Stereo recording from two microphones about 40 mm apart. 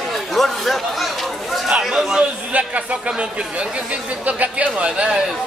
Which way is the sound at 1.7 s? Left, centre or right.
Centre.